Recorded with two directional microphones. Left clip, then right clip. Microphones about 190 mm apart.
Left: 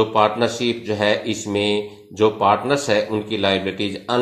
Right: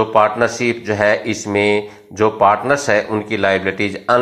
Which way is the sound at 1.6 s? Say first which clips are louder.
Right 6 dB; 50° right (ahead or behind).